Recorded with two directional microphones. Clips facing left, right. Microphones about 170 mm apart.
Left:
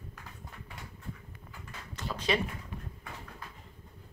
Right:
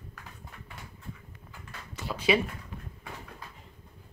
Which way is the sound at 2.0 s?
10° right (ahead or behind).